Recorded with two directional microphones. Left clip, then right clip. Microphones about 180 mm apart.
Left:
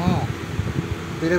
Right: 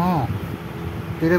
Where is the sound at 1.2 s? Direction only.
60° right (ahead or behind).